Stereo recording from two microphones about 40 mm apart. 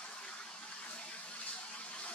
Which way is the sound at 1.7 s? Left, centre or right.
Left.